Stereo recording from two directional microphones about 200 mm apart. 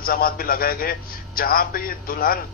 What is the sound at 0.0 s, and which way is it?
A man's voice, 50° left (ahead or behind).